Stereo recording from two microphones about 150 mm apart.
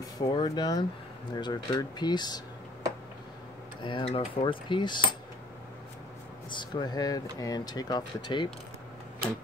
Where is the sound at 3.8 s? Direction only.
35° left (ahead or behind).